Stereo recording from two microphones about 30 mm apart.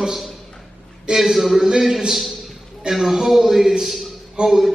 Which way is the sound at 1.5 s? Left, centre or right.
Centre.